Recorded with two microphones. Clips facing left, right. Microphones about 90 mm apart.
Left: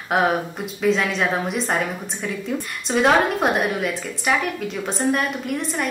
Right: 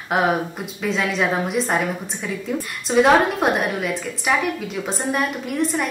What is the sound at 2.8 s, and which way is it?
A woman's voice, centre (ahead or behind).